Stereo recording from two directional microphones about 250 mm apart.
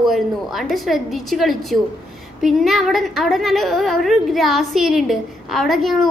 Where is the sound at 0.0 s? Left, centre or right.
Centre.